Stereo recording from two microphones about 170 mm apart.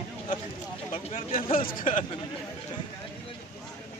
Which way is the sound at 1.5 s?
55° left (ahead or behind).